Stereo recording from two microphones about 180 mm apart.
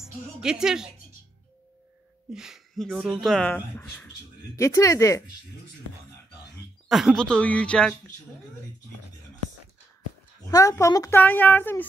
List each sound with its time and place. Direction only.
0.0 s speech: 5° right (ahead or behind)
2.3 s a woman's voice: centre (ahead or behind); by 5.2 s 15° left (ahead or behind)
6.9 s speech: centre (ahead or behind)
10.5 s a woman's voice: 15° left (ahead or behind)